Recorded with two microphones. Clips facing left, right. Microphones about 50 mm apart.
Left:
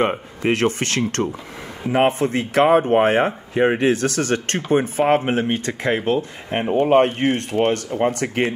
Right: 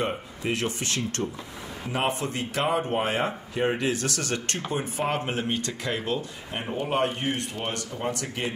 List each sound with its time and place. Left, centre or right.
0.0 s speech: left
1.9 s speech: left